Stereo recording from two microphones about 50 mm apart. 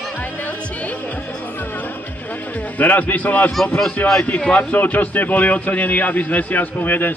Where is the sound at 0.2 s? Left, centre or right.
Left.